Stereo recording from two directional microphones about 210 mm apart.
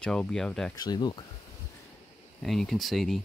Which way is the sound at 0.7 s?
20° left (ahead or behind).